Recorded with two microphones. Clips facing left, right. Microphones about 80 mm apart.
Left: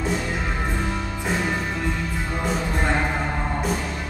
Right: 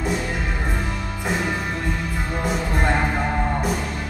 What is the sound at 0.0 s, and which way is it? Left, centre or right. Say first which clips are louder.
Music: right 1 dB; centre.